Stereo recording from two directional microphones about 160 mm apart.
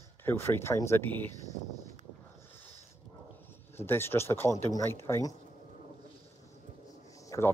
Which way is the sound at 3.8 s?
15° left (ahead or behind).